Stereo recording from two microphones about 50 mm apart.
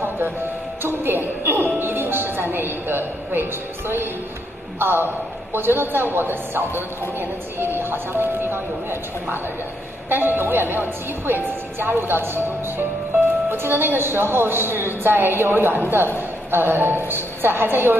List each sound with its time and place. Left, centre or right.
0.8 s a woman's voice: right
4.7 s a woman's voice: right
10.0 s a woman's voice: right